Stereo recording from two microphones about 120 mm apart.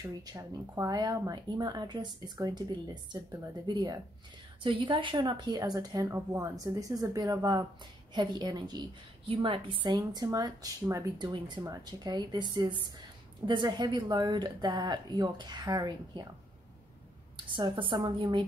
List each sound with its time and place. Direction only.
0.0 s speech: 30° right (ahead or behind)
9.3 s speech: 45° right (ahead or behind)
17.6 s speech: 40° right (ahead or behind)